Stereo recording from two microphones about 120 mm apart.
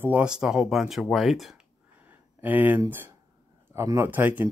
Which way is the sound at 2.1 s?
15° right (ahead or behind).